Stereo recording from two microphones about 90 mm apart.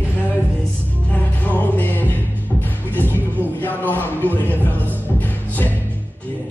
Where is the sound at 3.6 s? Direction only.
20° left (ahead or behind).